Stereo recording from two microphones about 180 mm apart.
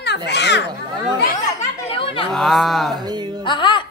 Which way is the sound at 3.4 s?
25° left (ahead or behind).